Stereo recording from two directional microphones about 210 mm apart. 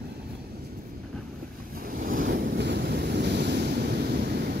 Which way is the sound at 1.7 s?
45° right (ahead or behind).